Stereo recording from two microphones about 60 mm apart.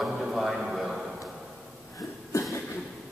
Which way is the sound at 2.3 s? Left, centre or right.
Left.